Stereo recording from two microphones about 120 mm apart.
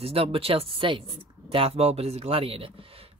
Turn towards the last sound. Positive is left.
turn(degrees=-50)  # may be behind; listen again after turning